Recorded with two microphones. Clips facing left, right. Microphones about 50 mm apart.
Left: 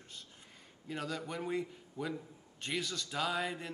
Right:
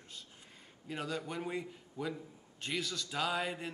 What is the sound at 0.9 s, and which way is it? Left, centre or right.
Speech, centre.